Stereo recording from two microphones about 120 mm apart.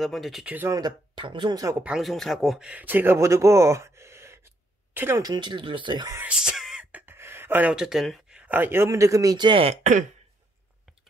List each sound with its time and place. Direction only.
0.0 s speech: centre (ahead or behind)
0.7 s speech: 35° right (ahead or behind)
1.8 s speech: 5° right (ahead or behind)
5.2 s speech: 35° right (ahead or behind)
6.2 s speech: 5° right (ahead or behind); by 9.8 s 45° right (ahead or behind)